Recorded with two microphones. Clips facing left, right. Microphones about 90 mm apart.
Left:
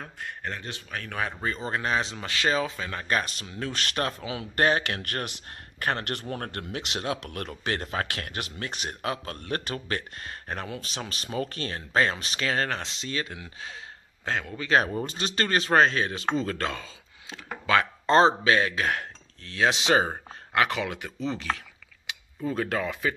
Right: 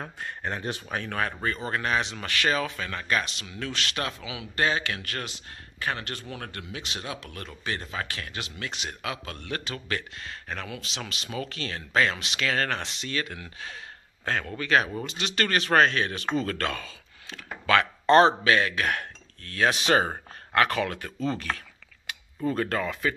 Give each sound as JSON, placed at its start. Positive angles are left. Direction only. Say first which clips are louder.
{"t": 0.4, "sound": "speech", "louder": "right 5 dB", "side_deg": -20}
{"t": 1.4, "sound": "speech", "louder": "even", "side_deg": 20}
{"t": 3.1, "sound": "speech", "louder": "left 1 dB", "side_deg": 35}
{"t": 4.6, "sound": "speech", "louder": "left 3 dB", "side_deg": 55}
{"t": 15.0, "sound": "a man's voice", "louder": "even", "side_deg": 35}
{"t": 22.4, "sound": "speech", "louder": "right 1 dB", "side_deg": 5}